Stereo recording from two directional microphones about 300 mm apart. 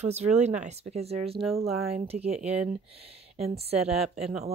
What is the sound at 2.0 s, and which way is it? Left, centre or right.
Speech, right.